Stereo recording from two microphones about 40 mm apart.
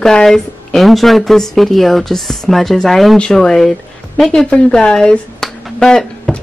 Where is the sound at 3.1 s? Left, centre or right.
Centre.